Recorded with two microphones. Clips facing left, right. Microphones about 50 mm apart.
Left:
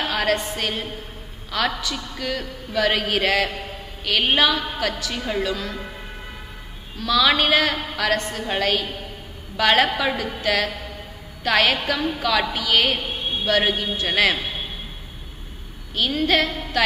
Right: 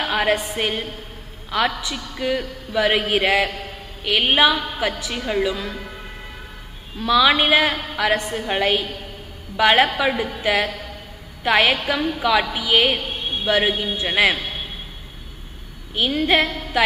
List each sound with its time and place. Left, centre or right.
0.0 s a woman's voice: right
7.0 s a woman's voice: centre
15.9 s a woman's voice: right